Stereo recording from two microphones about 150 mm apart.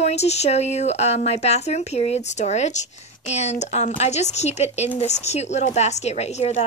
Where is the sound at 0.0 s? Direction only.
45° left (ahead or behind).